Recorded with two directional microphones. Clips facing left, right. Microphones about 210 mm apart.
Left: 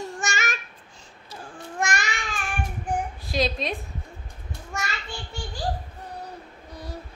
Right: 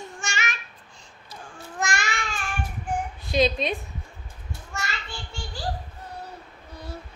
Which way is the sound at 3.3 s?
Centre (ahead or behind).